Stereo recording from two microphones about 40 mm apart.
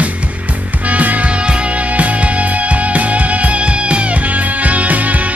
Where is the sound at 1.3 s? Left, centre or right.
Right.